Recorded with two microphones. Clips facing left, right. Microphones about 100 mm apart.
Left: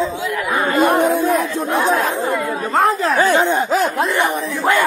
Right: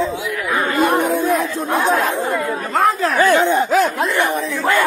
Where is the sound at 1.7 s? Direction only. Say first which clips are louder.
Even; 45° right (ahead or behind).